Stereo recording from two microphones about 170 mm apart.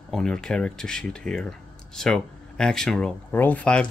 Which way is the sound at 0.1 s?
5° left (ahead or behind).